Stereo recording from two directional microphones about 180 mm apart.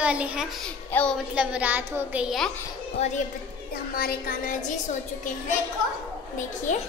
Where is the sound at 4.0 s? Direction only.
55° left (ahead or behind).